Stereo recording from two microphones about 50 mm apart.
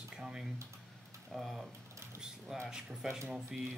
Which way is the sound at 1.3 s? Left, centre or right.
Centre.